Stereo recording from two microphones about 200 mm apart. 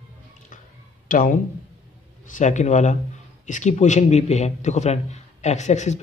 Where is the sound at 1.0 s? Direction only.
45° left (ahead or behind).